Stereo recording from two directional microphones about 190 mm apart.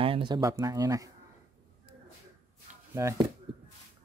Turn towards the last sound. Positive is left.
turn(degrees=-15)  # may be behind; listen again after turning